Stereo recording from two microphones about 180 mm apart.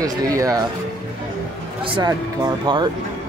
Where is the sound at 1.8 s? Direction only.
30° right (ahead or behind).